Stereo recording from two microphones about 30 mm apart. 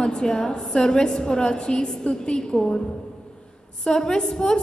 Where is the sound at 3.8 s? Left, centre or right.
Left.